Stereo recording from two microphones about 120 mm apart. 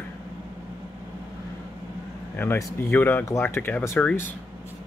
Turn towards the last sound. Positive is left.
turn(degrees=10)  # may be behind; listen again after turning